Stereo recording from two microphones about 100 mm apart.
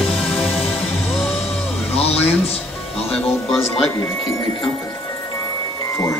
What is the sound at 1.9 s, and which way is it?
Music, 90° left.